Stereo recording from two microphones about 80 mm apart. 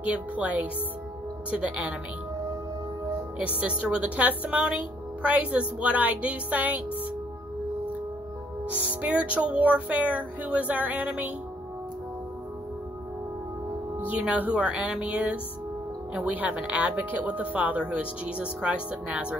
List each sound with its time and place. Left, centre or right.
0.0 s a woman's voice: centre
3.3 s a woman's voice: centre
9.0 s a woman's voice: centre
13.9 s a woman's voice: centre